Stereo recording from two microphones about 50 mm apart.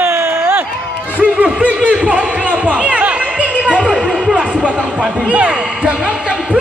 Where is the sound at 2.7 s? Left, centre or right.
Right.